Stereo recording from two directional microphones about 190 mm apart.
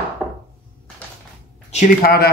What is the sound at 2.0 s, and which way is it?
Speech, 55° left (ahead or behind).